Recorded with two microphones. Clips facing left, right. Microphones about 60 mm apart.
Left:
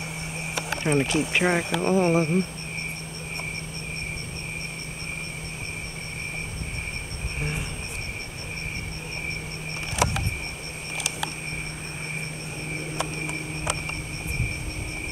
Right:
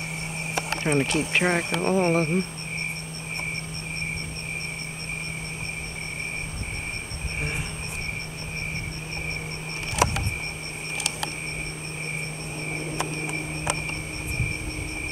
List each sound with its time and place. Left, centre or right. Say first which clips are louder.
0.8 s speech: left 1 dB; centre